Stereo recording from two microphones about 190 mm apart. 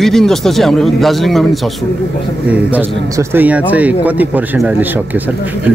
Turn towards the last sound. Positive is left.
turn(degrees=-10)  # may be behind; listen again after turning